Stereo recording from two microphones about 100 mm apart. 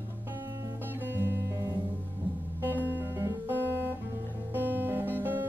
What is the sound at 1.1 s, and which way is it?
Music, 20° right (ahead or behind).